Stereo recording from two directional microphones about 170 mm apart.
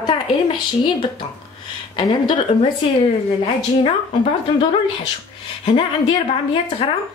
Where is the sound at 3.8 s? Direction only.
30° left (ahead or behind).